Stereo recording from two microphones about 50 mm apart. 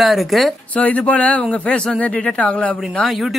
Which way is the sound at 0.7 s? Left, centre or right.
Left.